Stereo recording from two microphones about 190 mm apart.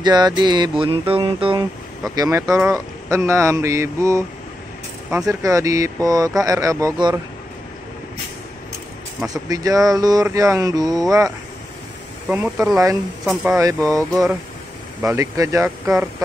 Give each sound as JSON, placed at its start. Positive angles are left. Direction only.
{"t": 0.0, "sound": "a sound", "side_deg": -20}
{"t": 5.1, "sound": "speech", "side_deg": -15}
{"t": 9.3, "sound": "a sound", "side_deg": -20}
{"t": 10.2, "sound": "speech", "side_deg": -15}
{"t": 13.2, "sound": "speech", "side_deg": -5}
{"t": 15.0, "sound": "speech", "side_deg": -15}